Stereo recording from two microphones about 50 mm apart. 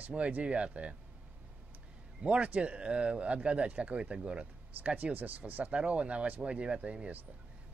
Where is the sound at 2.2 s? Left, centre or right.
Right.